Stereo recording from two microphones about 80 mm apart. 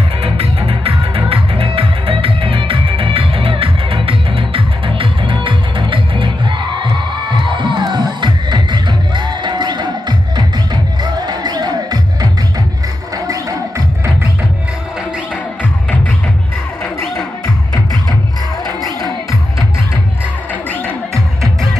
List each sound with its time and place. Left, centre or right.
0.6 s music: right
6.8 s crowd: right
18.7 s music: left